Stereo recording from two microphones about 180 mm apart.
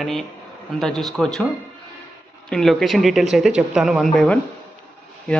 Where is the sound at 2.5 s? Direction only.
Centre (ahead or behind).